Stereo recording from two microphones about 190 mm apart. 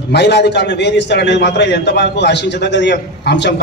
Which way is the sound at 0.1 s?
65° left (ahead or behind).